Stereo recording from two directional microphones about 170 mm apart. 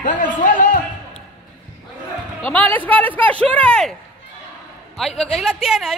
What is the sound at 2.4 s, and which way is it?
A woman's voice, 10° left (ahead or behind).